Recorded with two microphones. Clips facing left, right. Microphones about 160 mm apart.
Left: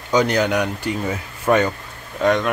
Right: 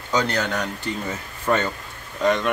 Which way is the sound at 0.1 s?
15° left (ahead or behind).